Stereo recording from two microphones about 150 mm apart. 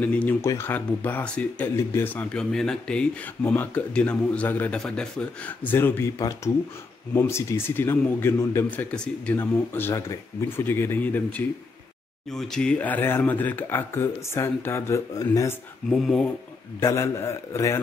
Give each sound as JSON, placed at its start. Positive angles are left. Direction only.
{"t": 0.0, "sound": "speech", "side_deg": 10}
{"t": 2.3, "sound": "speech", "side_deg": 5}
{"t": 15.9, "sound": "speech", "side_deg": 5}
{"t": 16.8, "sound": "a man's voice", "side_deg": 20}